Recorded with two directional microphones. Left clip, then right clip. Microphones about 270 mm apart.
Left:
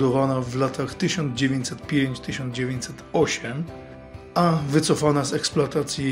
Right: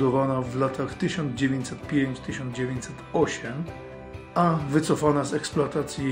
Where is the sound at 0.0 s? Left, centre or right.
Left.